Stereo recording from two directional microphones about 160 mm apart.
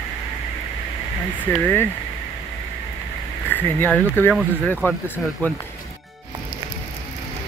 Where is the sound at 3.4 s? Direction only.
10° left (ahead or behind).